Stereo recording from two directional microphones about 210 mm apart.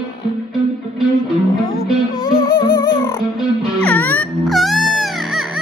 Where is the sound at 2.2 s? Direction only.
20° left (ahead or behind).